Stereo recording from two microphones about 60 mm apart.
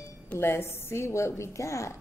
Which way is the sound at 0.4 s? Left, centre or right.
Left.